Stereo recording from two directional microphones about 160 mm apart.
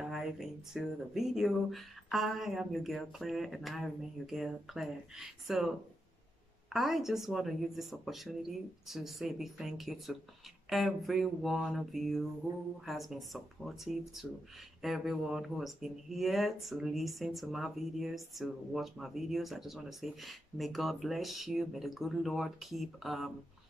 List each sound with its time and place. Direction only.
0.0 s speech: 5° right (ahead or behind)
6.7 s speech: centre (ahead or behind)